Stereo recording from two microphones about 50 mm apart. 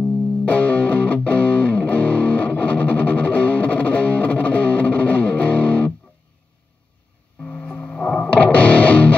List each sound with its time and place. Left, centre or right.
0.5 s music: left
7.5 s music: left